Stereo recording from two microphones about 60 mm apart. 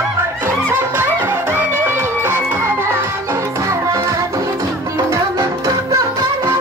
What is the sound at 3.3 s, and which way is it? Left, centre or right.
Music, right.